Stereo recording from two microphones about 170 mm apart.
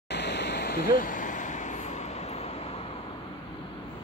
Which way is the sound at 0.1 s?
85° left.